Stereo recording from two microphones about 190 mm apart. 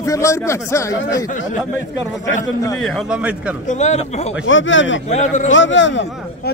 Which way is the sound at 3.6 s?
40° left (ahead or behind).